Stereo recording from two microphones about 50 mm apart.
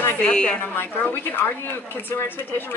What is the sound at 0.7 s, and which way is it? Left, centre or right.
Speech, left.